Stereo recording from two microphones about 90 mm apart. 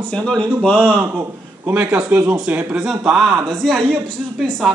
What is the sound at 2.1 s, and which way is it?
Speech, 20° right (ahead or behind).